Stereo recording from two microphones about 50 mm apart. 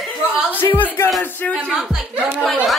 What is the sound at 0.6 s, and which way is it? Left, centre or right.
Speech, left.